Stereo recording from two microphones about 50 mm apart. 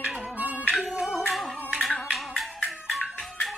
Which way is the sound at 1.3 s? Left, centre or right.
Centre.